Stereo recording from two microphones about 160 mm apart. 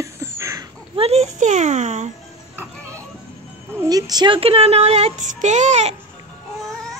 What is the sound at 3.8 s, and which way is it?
Speech, 25° right (ahead or behind).